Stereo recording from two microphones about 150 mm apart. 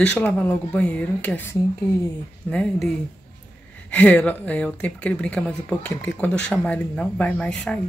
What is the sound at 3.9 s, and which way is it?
A woman's voice, 10° left (ahead or behind).